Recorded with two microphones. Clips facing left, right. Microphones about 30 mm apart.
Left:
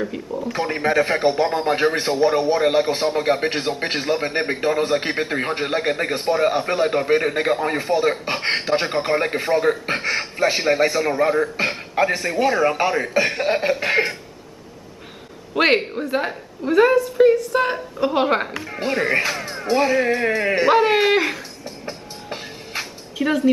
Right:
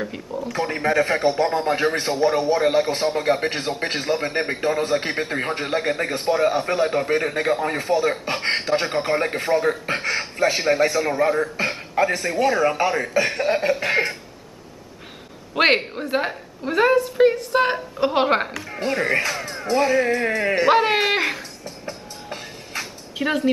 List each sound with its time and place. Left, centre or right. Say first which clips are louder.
0.0 s speech: left 2 dB; centre
0.5 s a man's voice: left 1 dB; centre
15.5 s a man's voice: left 1 dB; centre
17.0 s a sound: left 2 dB; centre
18.2 s a woman's voice: even; centre
18.6 s a man's voice: left 1 dB; centre
20.6 s a woman's voice: left 2 dB; centre
21.6 s music: left 2 dB; centre
23.1 s speech: left 2 dB; centre